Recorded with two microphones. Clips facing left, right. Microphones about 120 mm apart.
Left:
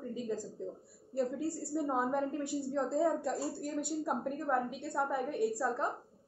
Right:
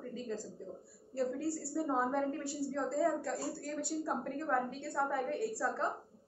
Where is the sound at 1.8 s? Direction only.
15° left (ahead or behind).